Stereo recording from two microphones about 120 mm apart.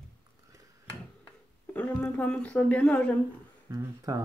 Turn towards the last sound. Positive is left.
turn(degrees=-25)  # may be behind; listen again after turning